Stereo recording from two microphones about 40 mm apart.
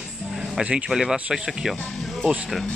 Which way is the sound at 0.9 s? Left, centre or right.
Centre.